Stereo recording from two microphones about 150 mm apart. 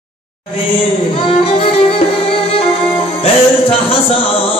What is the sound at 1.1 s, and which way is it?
Music, 40° left (ahead or behind).